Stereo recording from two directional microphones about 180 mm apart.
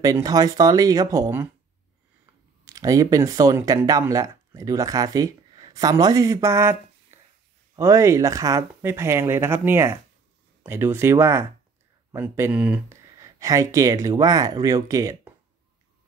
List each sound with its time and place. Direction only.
0.0 s speech: 20° right (ahead or behind)
2.6 s speech: 20° right (ahead or behind)
7.1 s a sound: 15° right (ahead or behind)
7.7 s speech: 15° right (ahead or behind)
13.2 s speech: 20° right (ahead or behind)